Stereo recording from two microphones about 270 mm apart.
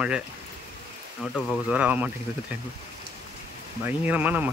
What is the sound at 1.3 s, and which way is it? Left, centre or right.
Speech, centre.